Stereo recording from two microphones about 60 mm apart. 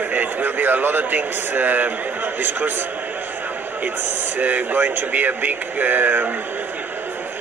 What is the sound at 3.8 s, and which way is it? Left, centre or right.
Speech, right.